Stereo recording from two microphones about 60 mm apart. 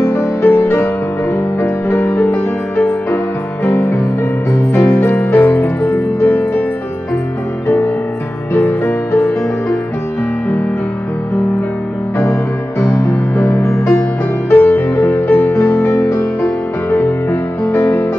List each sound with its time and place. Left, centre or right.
0.0 s music: left
7.6 s music: left
12.9 s music: left
14.5 s music: left